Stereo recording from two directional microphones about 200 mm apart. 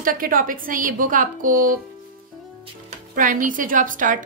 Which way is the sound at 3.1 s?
40° right (ahead or behind).